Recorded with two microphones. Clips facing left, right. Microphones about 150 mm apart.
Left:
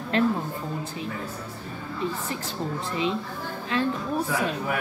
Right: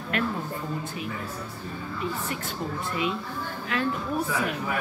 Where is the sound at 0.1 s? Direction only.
30° left (ahead or behind).